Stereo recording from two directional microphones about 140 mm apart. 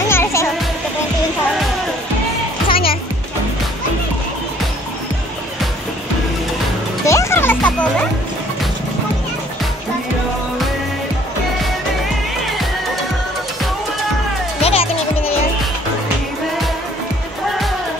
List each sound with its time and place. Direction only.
0.1 s music: 20° left (ahead or behind)
2.7 s music: 40° left (ahead or behind)
7.1 s music: 20° left (ahead or behind)
14.6 s music: 45° left (ahead or behind)